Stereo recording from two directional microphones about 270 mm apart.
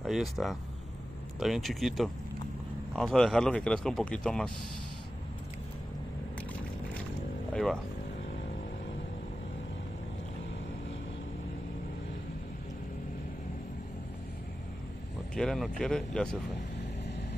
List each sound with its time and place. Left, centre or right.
0.0 s speech: centre
7.5 s speech: centre
15.3 s speech: centre